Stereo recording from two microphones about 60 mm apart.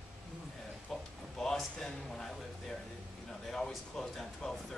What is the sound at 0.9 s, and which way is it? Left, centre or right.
Speech, centre.